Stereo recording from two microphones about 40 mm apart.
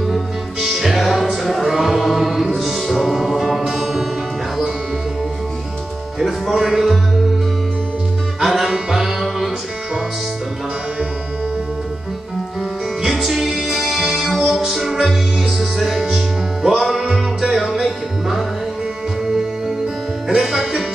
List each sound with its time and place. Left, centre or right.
0.1 s music: centre
1.6 s music: centre
6.1 s music: centre
8.4 s music: centre
13.1 s music: centre
20.2 s music: centre